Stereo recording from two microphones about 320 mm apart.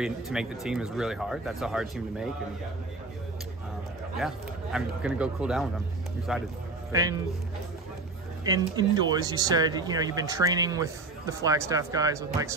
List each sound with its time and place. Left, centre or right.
0.0 s speech: centre
4.2 s speech: centre
8.5 s speech: centre